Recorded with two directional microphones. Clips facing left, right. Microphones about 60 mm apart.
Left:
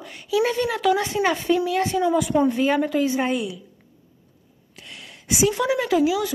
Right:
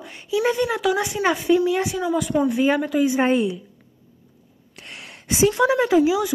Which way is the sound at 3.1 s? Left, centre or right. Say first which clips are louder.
Right 4 dB; right.